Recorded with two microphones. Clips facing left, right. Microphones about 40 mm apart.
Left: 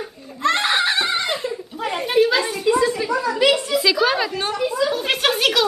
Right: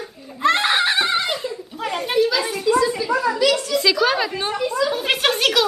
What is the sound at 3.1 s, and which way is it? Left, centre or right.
Children playing, centre.